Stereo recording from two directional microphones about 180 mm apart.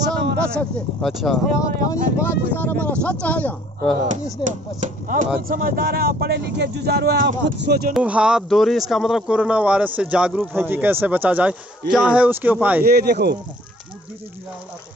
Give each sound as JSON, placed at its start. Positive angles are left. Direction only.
{"t": 0.6, "sound": "speech", "side_deg": 5}
{"t": 1.6, "sound": "speech", "side_deg": 15}
{"t": 4.4, "sound": "speech", "side_deg": 25}
{"t": 4.7, "sound": "speech", "side_deg": -45}
{"t": 7.9, "sound": "speech", "side_deg": -5}
{"t": 12.8, "sound": "speech", "side_deg": -60}